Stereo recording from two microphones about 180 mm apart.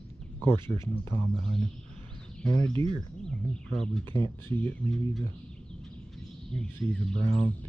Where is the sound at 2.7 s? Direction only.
30° right (ahead or behind).